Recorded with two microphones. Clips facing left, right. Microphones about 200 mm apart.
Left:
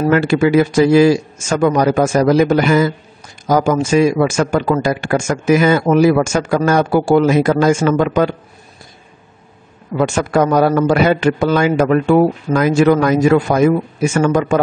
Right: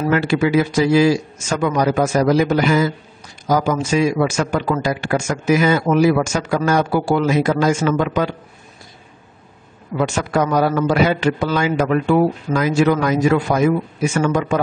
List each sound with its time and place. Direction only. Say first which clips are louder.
0.0 s speech: left 4 dB; 50° left (ahead or behind)
9.9 s speech: left 4 dB; 50° left (ahead or behind)